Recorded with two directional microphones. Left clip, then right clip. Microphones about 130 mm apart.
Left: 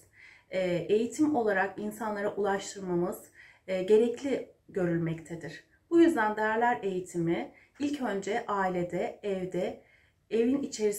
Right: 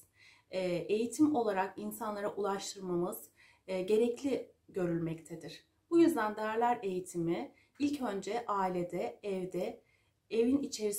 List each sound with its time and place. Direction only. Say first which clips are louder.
0.5 s speech: left 6 dB; 30° right (ahead or behind)